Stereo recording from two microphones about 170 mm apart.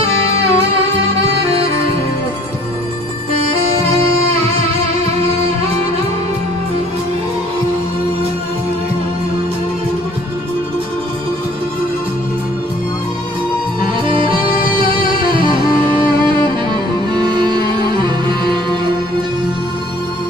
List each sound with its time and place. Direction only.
0.0 s music: 35° right (ahead or behind)
14.0 s music: 30° right (ahead or behind)
17.1 s music: 25° right (ahead or behind)